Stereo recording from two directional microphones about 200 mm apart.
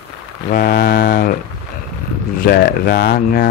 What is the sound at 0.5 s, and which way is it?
Mantra, 50° left (ahead or behind).